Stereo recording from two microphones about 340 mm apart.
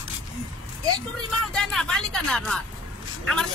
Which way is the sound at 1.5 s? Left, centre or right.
Centre.